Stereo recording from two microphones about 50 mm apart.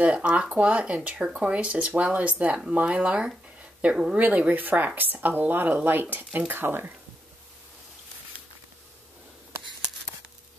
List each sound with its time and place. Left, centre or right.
0.0 s speech: right
4.2 s speech: right